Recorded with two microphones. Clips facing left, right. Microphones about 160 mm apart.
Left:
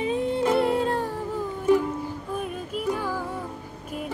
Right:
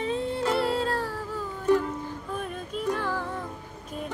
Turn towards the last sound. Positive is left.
turn(degrees=10)  # may be behind; listen again after turning